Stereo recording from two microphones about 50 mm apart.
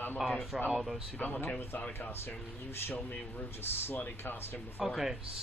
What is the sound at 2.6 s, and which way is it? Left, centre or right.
Speech, left.